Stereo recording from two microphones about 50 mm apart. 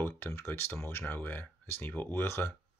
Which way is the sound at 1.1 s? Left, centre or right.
Left.